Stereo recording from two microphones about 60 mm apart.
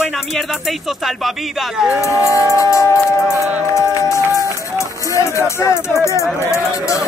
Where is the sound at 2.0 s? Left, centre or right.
Left.